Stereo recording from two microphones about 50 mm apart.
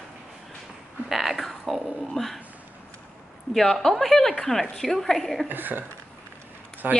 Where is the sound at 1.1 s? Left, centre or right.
Centre.